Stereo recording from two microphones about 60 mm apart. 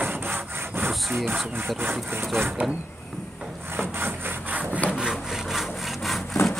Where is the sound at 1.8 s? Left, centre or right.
Right.